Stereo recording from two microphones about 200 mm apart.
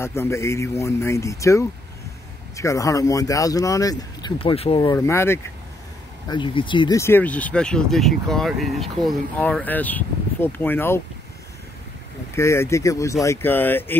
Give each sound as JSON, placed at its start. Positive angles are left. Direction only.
{"t": 0.0, "sound": "speech", "side_deg": 15}
{"t": 4.9, "sound": "speech", "side_deg": 15}
{"t": 6.2, "sound": "speech", "side_deg": 25}
{"t": 12.4, "sound": "speech", "side_deg": 15}